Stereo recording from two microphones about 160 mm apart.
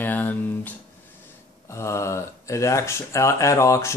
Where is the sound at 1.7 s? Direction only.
15° left (ahead or behind).